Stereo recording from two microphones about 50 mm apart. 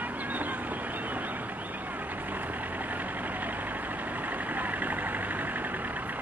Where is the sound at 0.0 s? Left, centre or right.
Right.